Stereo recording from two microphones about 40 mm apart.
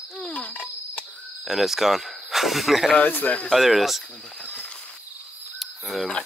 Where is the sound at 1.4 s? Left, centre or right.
Centre.